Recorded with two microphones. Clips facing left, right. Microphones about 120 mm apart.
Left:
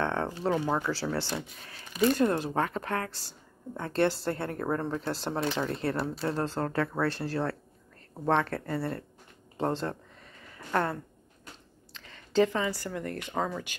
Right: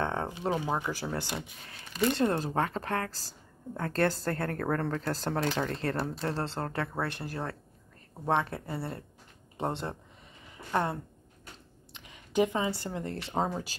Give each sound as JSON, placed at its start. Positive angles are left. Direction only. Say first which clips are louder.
{"t": 0.0, "sound": "speech", "louder": "left 2 dB", "side_deg": -15}
{"t": 2.1, "sound": "a woman's voice", "louder": "left 1 dB", "side_deg": -35}
{"t": 9.6, "sound": "a sound", "louder": "left 3 dB", "side_deg": -20}
{"t": 11.9, "sound": "speech", "louder": "left 3 dB", "side_deg": -15}